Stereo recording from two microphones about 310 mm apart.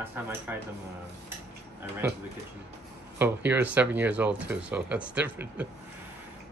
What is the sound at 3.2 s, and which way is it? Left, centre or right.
Speech, centre.